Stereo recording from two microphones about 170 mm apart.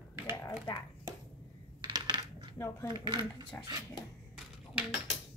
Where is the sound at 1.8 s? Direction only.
25° right (ahead or behind).